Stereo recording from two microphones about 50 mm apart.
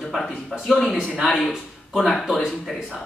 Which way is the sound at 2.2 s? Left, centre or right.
Centre.